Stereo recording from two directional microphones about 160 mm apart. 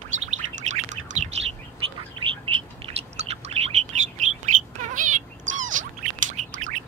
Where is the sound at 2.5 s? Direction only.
40° right (ahead or behind).